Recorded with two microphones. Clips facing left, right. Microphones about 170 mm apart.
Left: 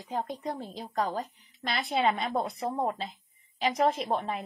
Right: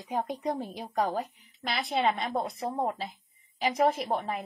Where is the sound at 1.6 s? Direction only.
Centre (ahead or behind).